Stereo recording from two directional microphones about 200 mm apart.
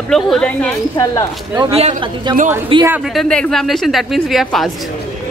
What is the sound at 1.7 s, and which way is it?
Speech, 30° right (ahead or behind).